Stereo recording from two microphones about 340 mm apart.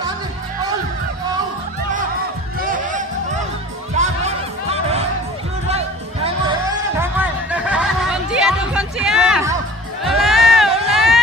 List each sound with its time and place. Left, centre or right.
2.6 s music: right
5.7 s music: centre
7.0 s a sound: centre
10.0 s run: centre